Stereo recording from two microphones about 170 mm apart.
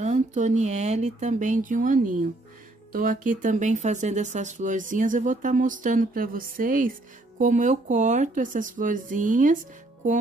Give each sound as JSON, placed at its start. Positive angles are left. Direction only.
{"t": 0.0, "sound": "speech", "side_deg": -45}